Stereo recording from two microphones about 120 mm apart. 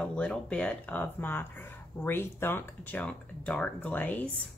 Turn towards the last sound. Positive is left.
turn(degrees=15)  # may be behind; listen again after turning